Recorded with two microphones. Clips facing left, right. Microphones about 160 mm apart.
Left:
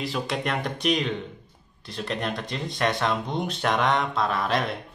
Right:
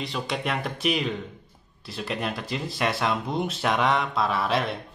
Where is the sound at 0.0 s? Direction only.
Centre (ahead or behind).